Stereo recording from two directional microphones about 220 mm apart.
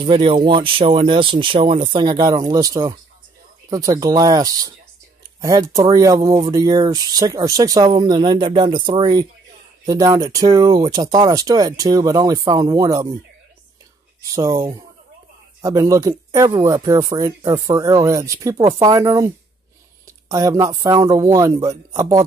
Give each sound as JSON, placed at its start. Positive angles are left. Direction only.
{"t": 0.0, "sound": "speech", "side_deg": -25}
{"t": 14.3, "sound": "speech", "side_deg": -15}